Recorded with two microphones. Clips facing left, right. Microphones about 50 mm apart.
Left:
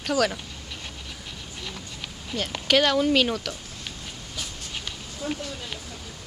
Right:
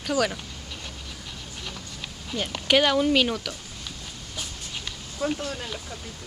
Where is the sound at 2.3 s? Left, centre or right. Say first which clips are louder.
Even; centre.